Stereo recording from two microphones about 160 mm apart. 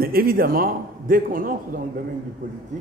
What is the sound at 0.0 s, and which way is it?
A man's voice, 65° right (ahead or behind).